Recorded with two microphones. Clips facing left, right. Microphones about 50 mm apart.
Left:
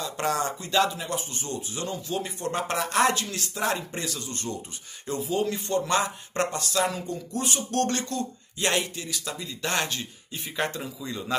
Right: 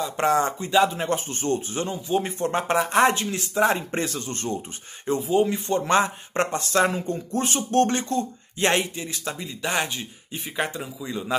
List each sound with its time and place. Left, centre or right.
0.0 s speech: right
0.8 s speech: right
1.9 s speech: right
3.9 s speech: right
9.6 s speech: centre